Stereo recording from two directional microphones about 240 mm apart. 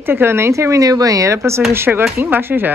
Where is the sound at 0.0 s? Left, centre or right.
Centre.